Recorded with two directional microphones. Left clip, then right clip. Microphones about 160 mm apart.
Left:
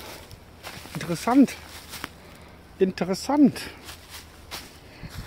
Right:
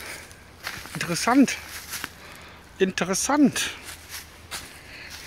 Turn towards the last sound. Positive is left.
turn(degrees=20)  # may be behind; listen again after turning